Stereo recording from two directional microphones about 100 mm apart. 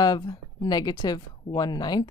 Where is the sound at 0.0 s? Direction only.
45° left (ahead or behind).